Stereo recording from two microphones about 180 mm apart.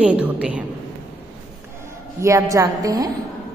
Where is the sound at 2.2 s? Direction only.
15° right (ahead or behind).